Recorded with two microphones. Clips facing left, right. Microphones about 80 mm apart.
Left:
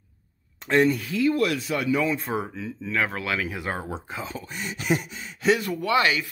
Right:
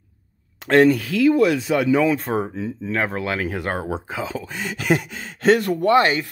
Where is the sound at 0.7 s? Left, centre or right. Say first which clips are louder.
Right 6 dB; right.